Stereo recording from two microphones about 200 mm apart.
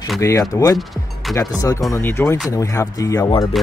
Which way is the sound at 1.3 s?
Centre (ahead or behind).